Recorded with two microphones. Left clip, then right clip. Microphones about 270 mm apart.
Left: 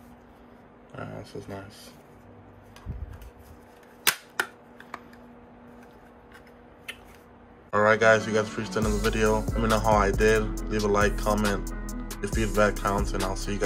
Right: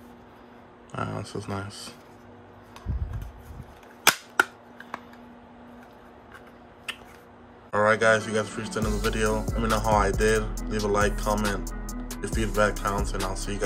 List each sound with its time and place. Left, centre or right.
0.9 s speech: right
7.7 s speech: centre